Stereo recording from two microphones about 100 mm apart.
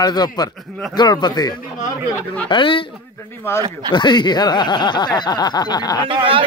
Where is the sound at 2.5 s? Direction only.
55° left (ahead or behind).